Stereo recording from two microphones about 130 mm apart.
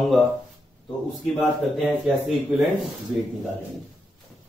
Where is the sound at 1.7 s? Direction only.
Centre (ahead or behind).